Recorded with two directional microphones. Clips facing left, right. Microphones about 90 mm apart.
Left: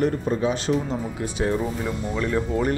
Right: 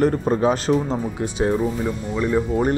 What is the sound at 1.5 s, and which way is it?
Speech, 10° right (ahead or behind).